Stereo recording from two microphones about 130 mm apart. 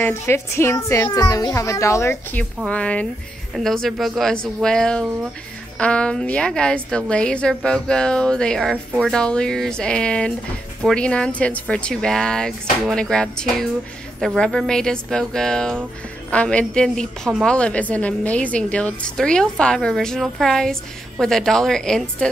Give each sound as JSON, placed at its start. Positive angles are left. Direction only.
{"t": 0.0, "sound": "a child's voice", "side_deg": 20}
{"t": 2.6, "sound": "a woman's voice", "side_deg": 10}